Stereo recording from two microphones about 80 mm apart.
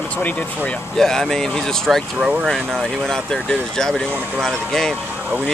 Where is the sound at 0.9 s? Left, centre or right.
Centre.